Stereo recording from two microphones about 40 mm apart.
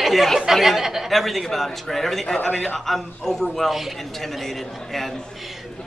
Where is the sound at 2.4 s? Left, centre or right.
Left.